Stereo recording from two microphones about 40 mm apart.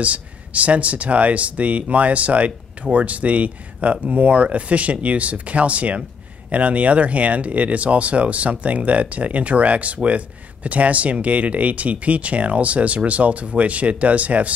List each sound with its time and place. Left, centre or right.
0.0 s speech: right